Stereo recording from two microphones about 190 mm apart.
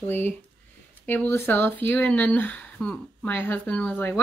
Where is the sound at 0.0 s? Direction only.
10° left (ahead or behind).